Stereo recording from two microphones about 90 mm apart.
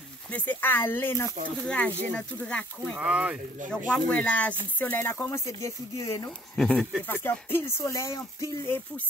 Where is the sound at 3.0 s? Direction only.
15° right (ahead or behind).